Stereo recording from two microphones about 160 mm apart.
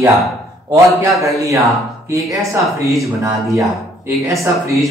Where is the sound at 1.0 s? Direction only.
20° right (ahead or behind).